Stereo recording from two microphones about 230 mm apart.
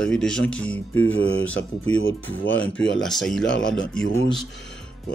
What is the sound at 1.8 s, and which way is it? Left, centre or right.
Speech, left.